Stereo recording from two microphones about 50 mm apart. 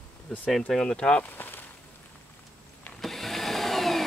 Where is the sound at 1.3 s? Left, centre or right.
Left.